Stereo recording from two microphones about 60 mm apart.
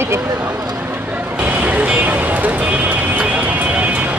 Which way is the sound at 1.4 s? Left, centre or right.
Right.